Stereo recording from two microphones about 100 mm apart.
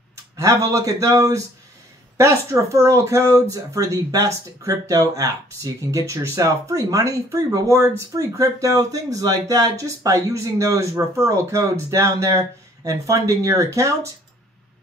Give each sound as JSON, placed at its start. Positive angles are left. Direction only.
{"t": 0.1, "sound": "speech", "side_deg": -30}